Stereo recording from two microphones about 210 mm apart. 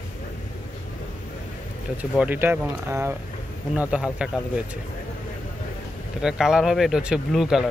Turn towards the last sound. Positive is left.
turn(degrees=0)  # may be behind; listen again after turning